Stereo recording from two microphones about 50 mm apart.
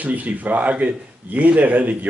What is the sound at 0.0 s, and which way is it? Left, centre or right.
A man's voice, right.